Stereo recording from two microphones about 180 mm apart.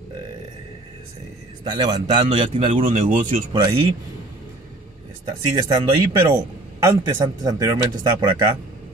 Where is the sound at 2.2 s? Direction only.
35° right (ahead or behind).